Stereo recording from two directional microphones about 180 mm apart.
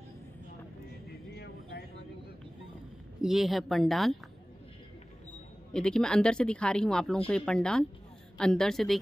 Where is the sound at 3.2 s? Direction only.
Centre (ahead or behind).